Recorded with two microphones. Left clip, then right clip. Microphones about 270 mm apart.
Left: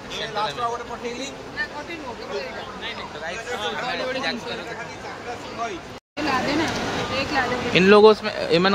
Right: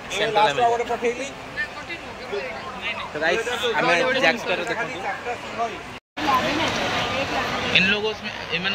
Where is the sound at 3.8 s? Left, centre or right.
Centre.